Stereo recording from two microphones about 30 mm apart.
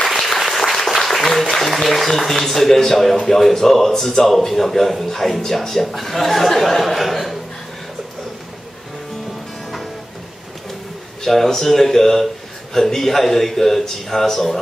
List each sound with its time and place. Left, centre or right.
0.1 s applause: centre
1.7 s a man's voice: centre
5.4 s speech: centre
5.7 s a man's voice: centre
6.8 s a man's voice: centre
11.2 s a man's voice: centre